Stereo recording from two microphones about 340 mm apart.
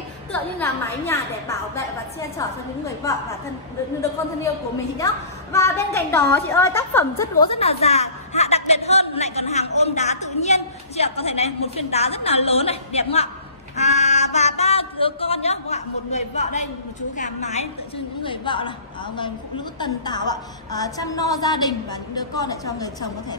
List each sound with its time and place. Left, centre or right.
0.3 s a woman's voice: centre
5.5 s a woman's voice: centre
7.5 s a sound: centre
10.4 s a woman's voice: centre
19.8 s a woman's voice: centre